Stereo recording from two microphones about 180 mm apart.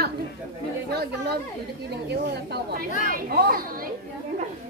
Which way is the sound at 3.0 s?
55° right (ahead or behind).